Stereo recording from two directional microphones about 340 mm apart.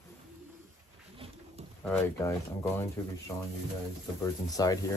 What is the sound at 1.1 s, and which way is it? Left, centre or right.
Pigeon, centre.